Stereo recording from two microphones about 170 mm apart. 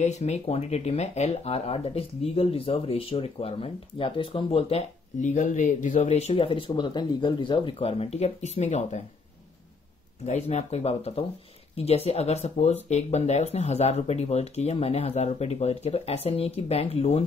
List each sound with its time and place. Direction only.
0.0 s speech: 40° left (ahead or behind)
10.2 s speech: 40° left (ahead or behind)